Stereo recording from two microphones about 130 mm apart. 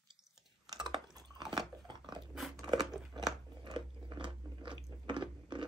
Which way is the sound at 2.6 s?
30° right (ahead or behind).